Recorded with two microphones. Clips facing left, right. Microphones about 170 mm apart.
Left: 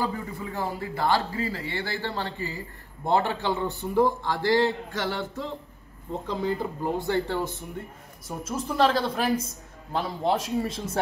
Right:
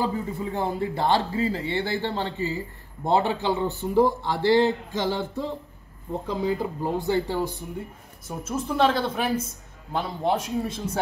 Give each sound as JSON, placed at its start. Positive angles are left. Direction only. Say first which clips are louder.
{"t": 0.4, "sound": "a man's voice", "louder": "right 5 dB", "side_deg": -25}
{"t": 8.3, "sound": "a man's voice", "louder": "right 2 dB", "side_deg": -5}